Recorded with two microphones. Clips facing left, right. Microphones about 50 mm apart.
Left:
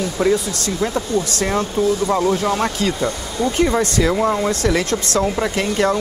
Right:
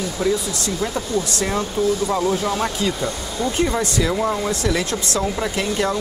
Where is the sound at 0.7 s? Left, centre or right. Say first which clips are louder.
Left 4 dB; centre.